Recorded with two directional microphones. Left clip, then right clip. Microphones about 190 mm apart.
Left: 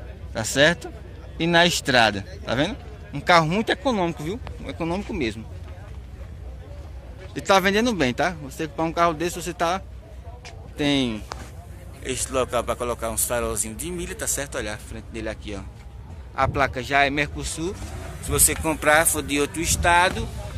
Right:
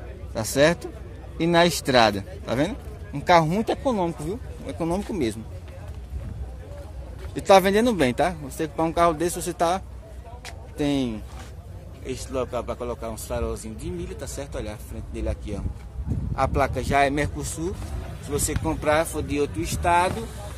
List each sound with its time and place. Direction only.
1.4 s speech: 5° right (ahead or behind)
4.6 s speech: 20° right (ahead or behind)
7.3 s speech: 15° right (ahead or behind)
10.4 s speech: centre (ahead or behind); by 17.7 s 20° right (ahead or behind)
18.3 s speech: 10° right (ahead or behind)